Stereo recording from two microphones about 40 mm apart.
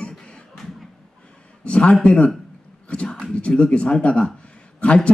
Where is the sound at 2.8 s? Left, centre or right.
Left.